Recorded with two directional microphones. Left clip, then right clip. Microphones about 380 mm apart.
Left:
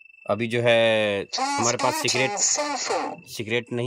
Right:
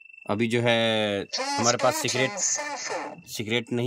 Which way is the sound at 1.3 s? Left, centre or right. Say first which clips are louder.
Left 1 dB; centre.